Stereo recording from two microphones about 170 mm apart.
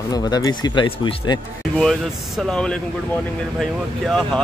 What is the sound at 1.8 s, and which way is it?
Speech, centre (ahead or behind).